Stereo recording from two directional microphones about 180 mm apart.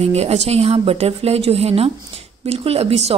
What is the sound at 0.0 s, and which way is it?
A woman's voice, 35° right (ahead or behind).